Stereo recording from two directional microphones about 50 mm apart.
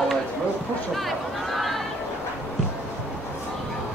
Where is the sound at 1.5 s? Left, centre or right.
Centre.